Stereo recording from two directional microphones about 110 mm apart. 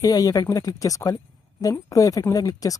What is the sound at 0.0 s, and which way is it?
Speech, 35° left (ahead or behind).